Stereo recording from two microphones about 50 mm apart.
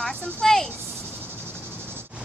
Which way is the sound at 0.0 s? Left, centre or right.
Centre.